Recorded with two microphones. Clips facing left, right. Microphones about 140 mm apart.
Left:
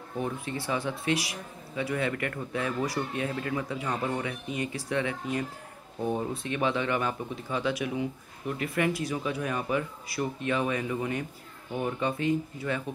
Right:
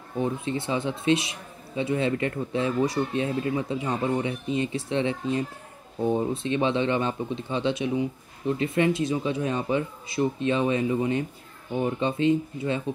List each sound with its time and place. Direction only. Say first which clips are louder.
0.2 s speech: right 6 dB; 20° right (ahead or behind)